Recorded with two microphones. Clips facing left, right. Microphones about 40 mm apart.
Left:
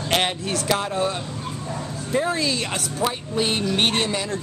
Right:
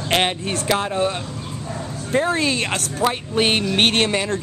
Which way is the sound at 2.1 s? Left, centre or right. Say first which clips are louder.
Right 3 dB; right.